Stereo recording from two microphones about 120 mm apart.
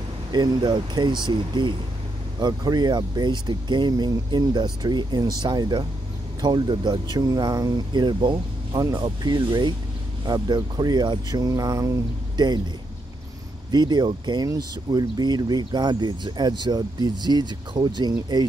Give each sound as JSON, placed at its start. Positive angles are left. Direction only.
{"t": 0.3, "sound": "speech", "side_deg": -35}
{"t": 13.7, "sound": "speech", "side_deg": -35}